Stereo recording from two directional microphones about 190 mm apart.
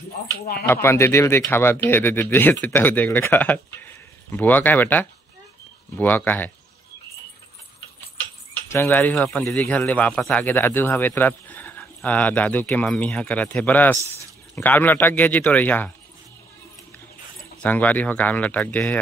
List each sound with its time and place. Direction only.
0.8 s a man's voice: 15° left (ahead or behind)
8.6 s a man's voice: 15° left (ahead or behind)
17.6 s a man's voice: 10° left (ahead or behind)